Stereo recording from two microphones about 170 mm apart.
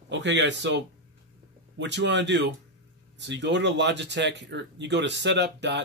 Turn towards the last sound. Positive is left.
turn(degrees=-90)